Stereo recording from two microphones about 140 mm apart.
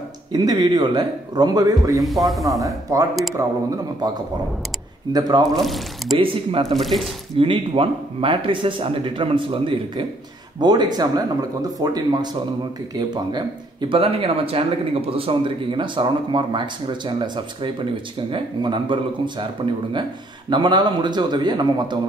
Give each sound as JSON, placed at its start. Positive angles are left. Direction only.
{"t": 0.3, "sound": "speech", "side_deg": -30}
{"t": 5.4, "sound": "speech", "side_deg": 0}
{"t": 6.1, "sound": "speech", "side_deg": -40}
{"t": 6.7, "sound": "speech", "side_deg": 0}
{"t": 7.3, "sound": "speech", "side_deg": -40}
{"t": 18.3, "sound": "speech", "side_deg": -35}